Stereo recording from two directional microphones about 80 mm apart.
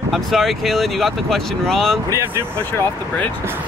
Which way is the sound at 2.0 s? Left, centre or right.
Right.